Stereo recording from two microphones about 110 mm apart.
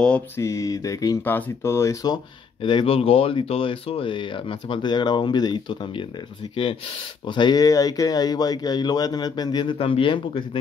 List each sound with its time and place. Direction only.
0.4 s speech: 30° left (ahead or behind)
2.6 s speech: 50° left (ahead or behind)